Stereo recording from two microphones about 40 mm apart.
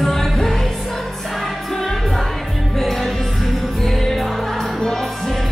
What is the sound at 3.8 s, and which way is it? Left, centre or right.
Music, centre.